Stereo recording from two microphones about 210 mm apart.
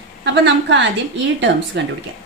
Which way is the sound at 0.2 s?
55° right (ahead or behind).